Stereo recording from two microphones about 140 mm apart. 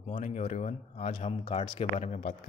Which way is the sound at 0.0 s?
60° left (ahead or behind).